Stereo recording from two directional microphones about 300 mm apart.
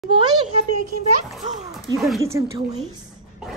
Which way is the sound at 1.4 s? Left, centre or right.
Right.